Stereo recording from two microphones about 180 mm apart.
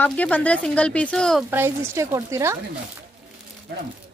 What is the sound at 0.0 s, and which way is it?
Speech, 10° left (ahead or behind).